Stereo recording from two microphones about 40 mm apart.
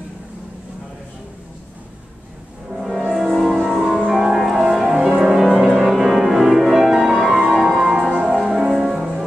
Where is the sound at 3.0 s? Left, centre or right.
Centre.